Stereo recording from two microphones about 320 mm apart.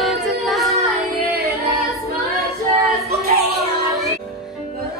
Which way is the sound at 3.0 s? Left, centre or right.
Right.